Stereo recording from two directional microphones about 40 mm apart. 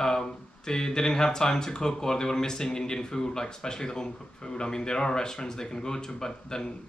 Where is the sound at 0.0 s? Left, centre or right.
Centre.